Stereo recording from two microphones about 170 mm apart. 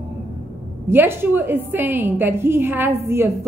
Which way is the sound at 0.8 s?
15° right (ahead or behind).